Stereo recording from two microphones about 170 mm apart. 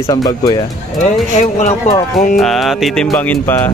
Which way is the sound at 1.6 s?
45° left (ahead or behind).